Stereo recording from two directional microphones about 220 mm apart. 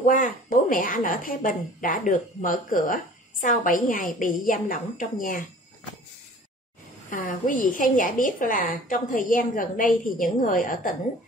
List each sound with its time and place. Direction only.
0.0 s speech: 35° left (ahead or behind)
7.1 s speech: 35° left (ahead or behind)